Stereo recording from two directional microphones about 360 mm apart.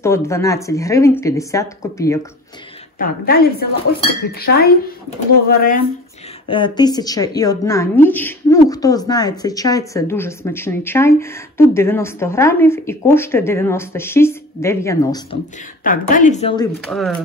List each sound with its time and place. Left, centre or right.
0.0 s a woman's voice: centre
3.0 s speech: left
6.4 s a woman's voice: centre
15.8 s speech: left
16.8 s speech: centre